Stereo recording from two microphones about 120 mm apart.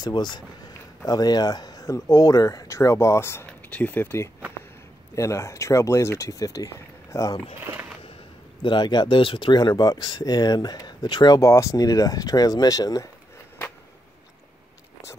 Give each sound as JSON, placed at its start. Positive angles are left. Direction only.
{"t": 0.0, "sound": "speech", "side_deg": 35}
{"t": 8.6, "sound": "speech", "side_deg": 40}